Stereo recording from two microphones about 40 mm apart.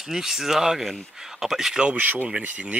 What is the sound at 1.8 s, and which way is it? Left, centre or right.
Speech, right.